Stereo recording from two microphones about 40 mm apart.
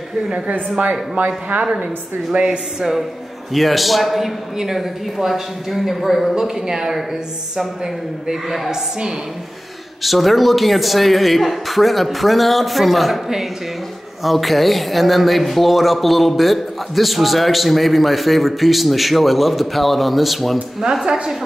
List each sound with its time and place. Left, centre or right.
1.1 s speech: right
1.6 s a woman's voice: right
2.3 s speech: right
2.8 s a man's voice: centre
6.3 s a man's voice: centre
10.0 s speech: centre
14.2 s speech: centre
20.8 s a man's voice: centre